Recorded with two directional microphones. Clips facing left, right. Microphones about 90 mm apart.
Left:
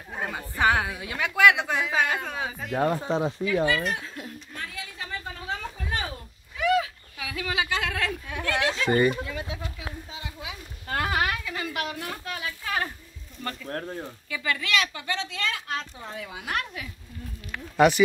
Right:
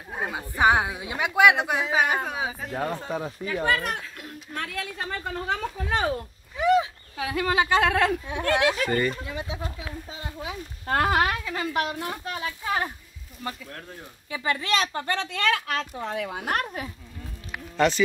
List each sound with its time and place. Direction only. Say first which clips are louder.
0.1 s a woman's voice: right 2 dB; 15° right (ahead or behind)
2.7 s speech: left 9 dB; 10° left (ahead or behind)
3.1 s speech: left 4 dB; 25° left (ahead or behind)
3.6 s speech: even; 50° right (ahead or behind)
4.6 s a sound: right 7 dB; 60° right (ahead or behind)
6.6 s a sound: right 3 dB; 25° right (ahead or behind)
7.2 s speech: right 6 dB; 45° right (ahead or behind)
8.5 s speech: right 3 dB; 20° right (ahead or behind)
8.8 s speech: left 3 dB; 15° left (ahead or behind)
9.2 s speech: even; 20° right (ahead or behind)
10.1 s speech: right 4 dB; 45° right (ahead or behind); by 12.9 s 20° right (ahead or behind)
13.7 s speech: left 8 dB; 40° left (ahead or behind)
14.3 s speech: right 2 dB; 30° right (ahead or behind); by 16.9 s 45° right (ahead or behind)
17.7 s speech: left 3 dB; 15° left (ahead or behind)